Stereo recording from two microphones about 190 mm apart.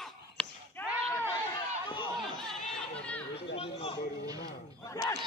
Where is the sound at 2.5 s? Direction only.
5° left (ahead or behind).